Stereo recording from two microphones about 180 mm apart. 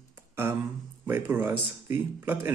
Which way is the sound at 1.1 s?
10° right (ahead or behind).